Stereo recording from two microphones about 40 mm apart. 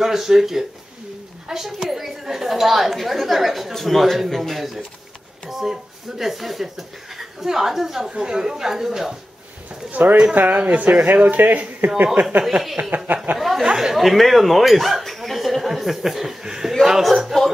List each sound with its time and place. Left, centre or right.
0.0 s a woman's voice: centre
9.8 s a man's voice: right
10.6 s speech: right
11.2 s a man's voice: right
13.4 s a sound: centre
13.9 s speech: centre
17.0 s a woman's voice: centre